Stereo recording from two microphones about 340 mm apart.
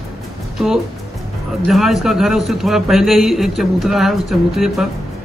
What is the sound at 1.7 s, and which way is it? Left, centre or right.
A man's voice, centre.